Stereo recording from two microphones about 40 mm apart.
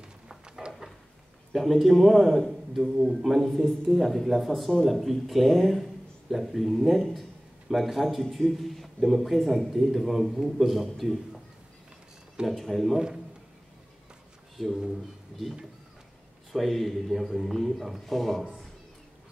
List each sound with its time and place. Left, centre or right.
0.3 s a sound: right
1.5 s a man's voice: centre
12.4 s speech: centre
15.3 s speech: centre
16.5 s speech: centre